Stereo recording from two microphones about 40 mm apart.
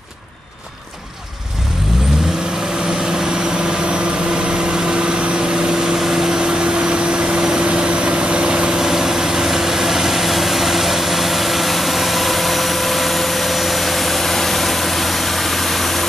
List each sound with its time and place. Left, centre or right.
3.9 s vehicle: right
8.7 s vehicle: centre